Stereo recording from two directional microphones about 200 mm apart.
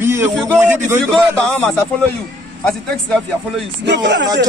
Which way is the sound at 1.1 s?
5° left (ahead or behind).